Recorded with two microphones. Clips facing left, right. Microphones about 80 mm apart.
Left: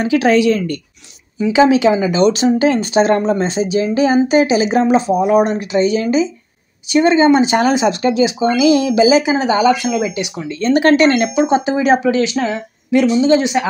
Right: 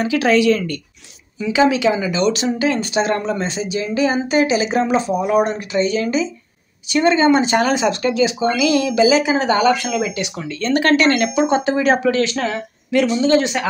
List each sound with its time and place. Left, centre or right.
0.0 s a woman's voice: left; by 10.1 s centre
10.1 s speech: centre
11.1 s speech: centre